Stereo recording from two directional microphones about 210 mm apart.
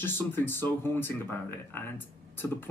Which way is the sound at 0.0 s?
10° left (ahead or behind).